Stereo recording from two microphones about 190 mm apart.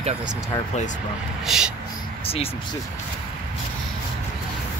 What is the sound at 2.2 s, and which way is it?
Speech, 30° left (ahead or behind).